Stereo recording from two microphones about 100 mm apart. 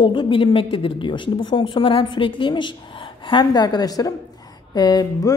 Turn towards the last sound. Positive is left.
turn(degrees=40)  # may be behind; listen again after turning